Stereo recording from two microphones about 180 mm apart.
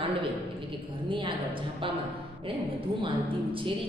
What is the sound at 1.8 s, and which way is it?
A woman's voice, 30° right (ahead or behind).